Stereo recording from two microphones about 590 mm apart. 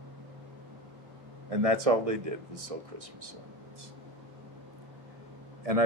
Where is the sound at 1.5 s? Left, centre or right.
Right.